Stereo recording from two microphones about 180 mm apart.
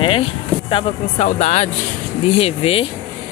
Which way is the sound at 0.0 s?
30° left (ahead or behind).